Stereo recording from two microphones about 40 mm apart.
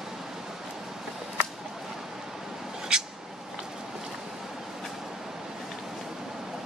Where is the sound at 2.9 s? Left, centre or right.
Right.